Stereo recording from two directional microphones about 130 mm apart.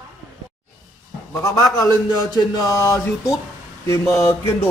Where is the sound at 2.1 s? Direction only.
30° left (ahead or behind).